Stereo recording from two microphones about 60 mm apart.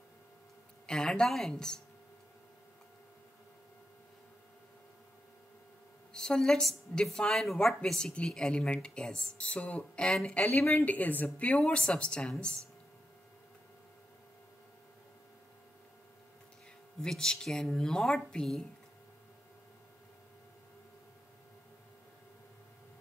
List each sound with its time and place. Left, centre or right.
0.8 s a woman's voice: centre
6.1 s a woman's voice: centre
10.6 s a woman's voice: left
10.9 s a woman's voice: left
17.0 s a woman's voice: centre